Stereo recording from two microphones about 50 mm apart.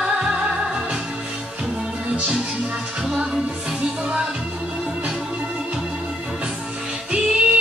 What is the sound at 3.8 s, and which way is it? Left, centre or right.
Music, right.